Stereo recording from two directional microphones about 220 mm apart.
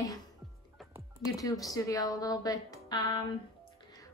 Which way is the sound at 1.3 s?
15° left (ahead or behind).